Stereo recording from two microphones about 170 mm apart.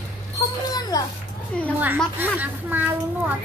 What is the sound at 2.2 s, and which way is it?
A child's voice, 10° right (ahead or behind).